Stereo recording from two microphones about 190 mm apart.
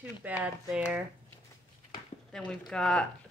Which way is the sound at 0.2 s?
5° right (ahead or behind).